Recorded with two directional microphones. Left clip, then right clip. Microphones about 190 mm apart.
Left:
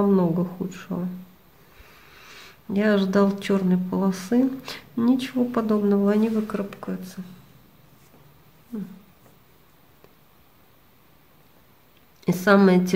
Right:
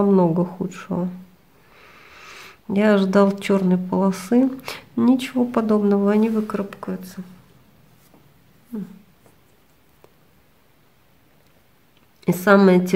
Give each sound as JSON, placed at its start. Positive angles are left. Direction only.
{"t": 0.0, "sound": "speech", "side_deg": -25}
{"t": 2.1, "sound": "speech", "side_deg": -25}
{"t": 12.2, "sound": "speech", "side_deg": -25}